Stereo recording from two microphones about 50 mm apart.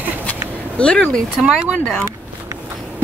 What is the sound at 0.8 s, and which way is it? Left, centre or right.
Speech, left.